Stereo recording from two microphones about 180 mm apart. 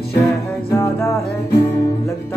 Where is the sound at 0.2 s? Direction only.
15° left (ahead or behind).